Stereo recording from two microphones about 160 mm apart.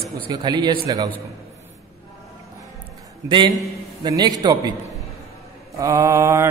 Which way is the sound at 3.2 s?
30° right (ahead or behind).